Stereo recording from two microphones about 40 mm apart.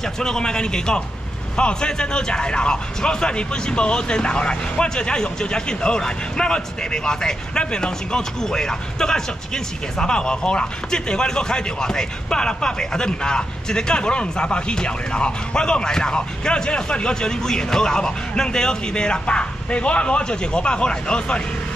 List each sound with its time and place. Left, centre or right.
0.2 s speech: centre